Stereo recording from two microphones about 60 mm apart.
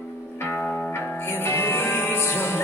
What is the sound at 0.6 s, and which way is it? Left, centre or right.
Music, left.